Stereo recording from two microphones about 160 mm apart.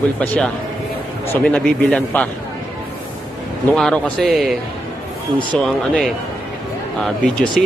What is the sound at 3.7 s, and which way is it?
Speech, 5° left (ahead or behind).